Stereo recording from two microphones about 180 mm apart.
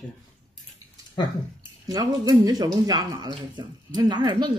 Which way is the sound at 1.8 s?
20° right (ahead or behind).